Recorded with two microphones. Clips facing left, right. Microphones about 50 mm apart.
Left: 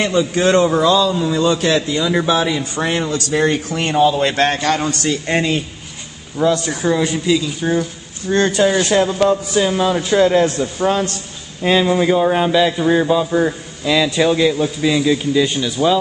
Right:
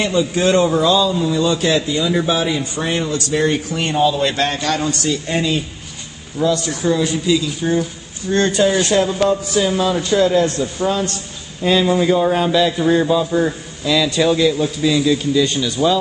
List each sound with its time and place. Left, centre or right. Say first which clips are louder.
0.0 s a man's voice: left 1 dB; left
0.6 s a man's voice: left 1 dB; left
4.1 s a man's voice: left 2 dB; left
6.3 s a man's voice: left 2 dB; left
8.7 s a man's voice: left 1 dB; centre
10.1 s a man's voice: left 2 dB; left
11.6 s a man's voice: left 1 dB; left